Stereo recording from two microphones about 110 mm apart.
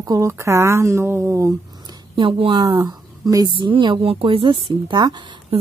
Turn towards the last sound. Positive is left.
turn(degrees=-45)  # may be behind; listen again after turning